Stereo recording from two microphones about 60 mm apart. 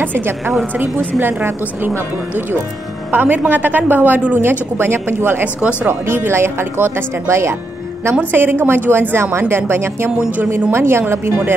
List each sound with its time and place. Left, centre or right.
0.0 s a woman's voice: right
3.1 s a man's voice: right
4.4 s a woman's voice: right
5.4 s a woman's voice: right
5.9 s speech: right
8.2 s a woman's voice: right